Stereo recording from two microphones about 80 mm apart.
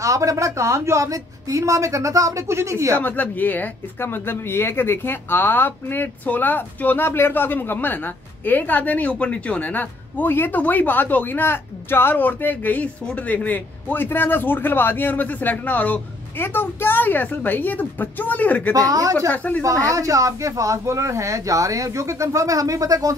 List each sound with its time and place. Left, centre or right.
0.0 s a woman's voice: right
3.0 s speech: left
18.7 s speech: right
19.3 s speech: centre
19.9 s speech: right